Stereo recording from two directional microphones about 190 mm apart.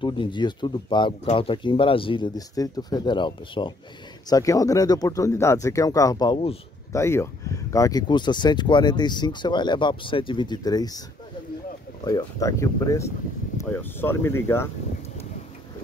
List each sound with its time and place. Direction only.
0.0 s speech: 25° left (ahead or behind)
6.9 s speech: 15° left (ahead or behind)
12.0 s speech: 20° left (ahead or behind)